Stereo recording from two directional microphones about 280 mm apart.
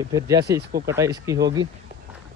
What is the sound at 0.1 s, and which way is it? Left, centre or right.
Speech, centre.